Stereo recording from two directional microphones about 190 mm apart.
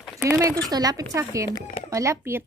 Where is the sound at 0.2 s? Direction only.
15° right (ahead or behind).